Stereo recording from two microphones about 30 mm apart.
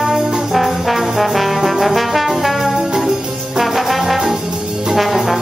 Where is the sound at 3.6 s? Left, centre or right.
Centre.